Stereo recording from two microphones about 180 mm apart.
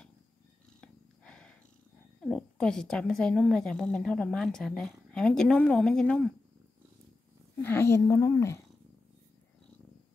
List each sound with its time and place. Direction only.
0.7 s purr: 5° left (ahead or behind)
2.2 s a woman's voice: 5° left (ahead or behind)
7.6 s a woman's voice: 15° left (ahead or behind)